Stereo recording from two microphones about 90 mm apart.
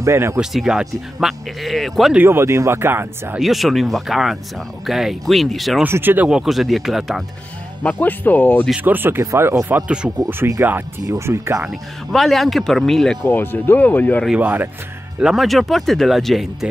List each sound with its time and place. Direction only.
0.0 s speech: 30° right (ahead or behind)
0.4 s speech: 5° right (ahead or behind)
2.2 s speech: 30° right (ahead or behind)
3.3 s speech: centre (ahead or behind)
5.9 s speech: 25° right (ahead or behind)
6.2 s speech: 5° right (ahead or behind)
7.8 s speech: 20° left (ahead or behind)
8.7 s speech: 20° right (ahead or behind)
10.4 s speech: 25° right (ahead or behind)
11.7 s speech: centre (ahead or behind)
13.2 s speech: 25° left (ahead or behind)
14.4 s speech: 20° right (ahead or behind)
15.1 s speech: 5° right (ahead or behind)